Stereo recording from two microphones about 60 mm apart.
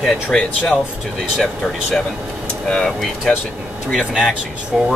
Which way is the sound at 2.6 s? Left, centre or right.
Centre.